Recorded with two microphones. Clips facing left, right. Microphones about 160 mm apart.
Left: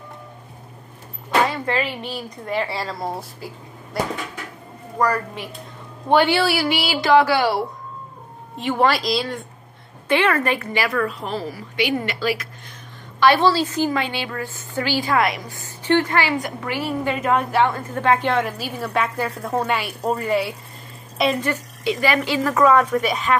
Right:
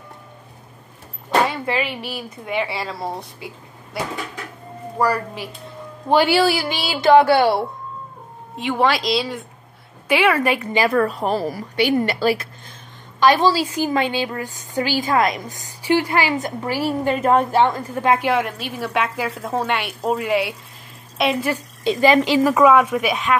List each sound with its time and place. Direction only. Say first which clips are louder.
1.5 s a sound: even; 5° right (ahead or behind)
2.1 s a woman's voice: even; 5° right (ahead or behind); by 7.1 s 20° right (ahead or behind)
8.5 s a woman's voice: even; centre (ahead or behind); by 10.9 s 15° right (ahead or behind)
10.9 s a woman's voice: right 5 dB; 35° right (ahead or behind)
13.2 s a woman's voice: even; 15° right (ahead or behind)
17.7 s a woman's voice: right 1 dB; 10° right (ahead or behind)
21.8 s a woman's voice: right 5 dB; 20° right (ahead or behind); by 23.3 s centre (ahead or behind)